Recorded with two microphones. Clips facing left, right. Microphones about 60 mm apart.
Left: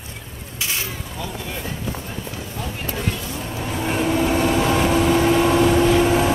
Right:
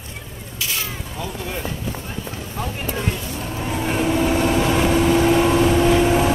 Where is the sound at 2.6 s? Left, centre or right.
Right.